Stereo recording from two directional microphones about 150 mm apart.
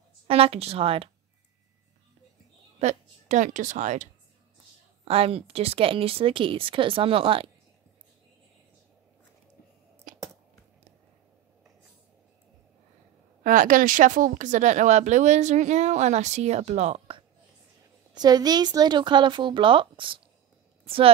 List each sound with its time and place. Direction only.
0.3 s speech: 40° right (ahead or behind)
2.8 s speech: 50° right (ahead or behind)
5.0 s speech: 40° right (ahead or behind)
10.1 s a sound: 65° right (ahead or behind)
13.4 s speech: 65° right (ahead or behind); by 17.2 s 50° right (ahead or behind)
18.1 s speech: 25° right (ahead or behind)